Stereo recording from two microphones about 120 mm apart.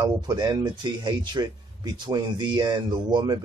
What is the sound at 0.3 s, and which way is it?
Speech, 35° right (ahead or behind).